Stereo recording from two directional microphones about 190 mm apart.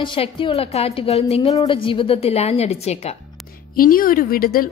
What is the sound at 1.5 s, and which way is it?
Speech, 20° left (ahead or behind).